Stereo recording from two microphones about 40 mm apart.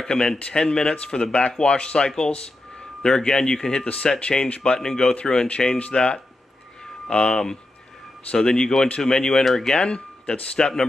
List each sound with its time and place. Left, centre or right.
0.0 s speech: centre
3.8 s speech: left
9.4 s speech: centre
9.7 s speech: left